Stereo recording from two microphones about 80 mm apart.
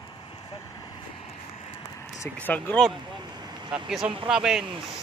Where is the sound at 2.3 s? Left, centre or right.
Left.